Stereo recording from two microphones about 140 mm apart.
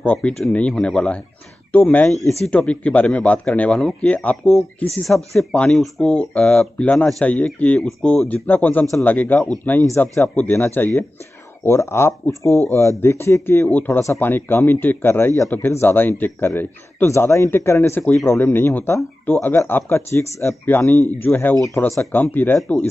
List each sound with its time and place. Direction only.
0.0 s speech: 10° left (ahead or behind)